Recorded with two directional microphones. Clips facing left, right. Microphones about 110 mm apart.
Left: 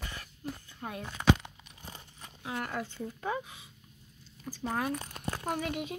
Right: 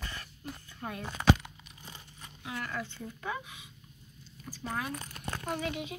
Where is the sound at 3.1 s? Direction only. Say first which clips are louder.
Left 3 dB; 35° left (ahead or behind).